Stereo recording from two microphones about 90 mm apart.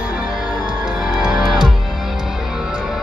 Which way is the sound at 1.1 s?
5° right (ahead or behind).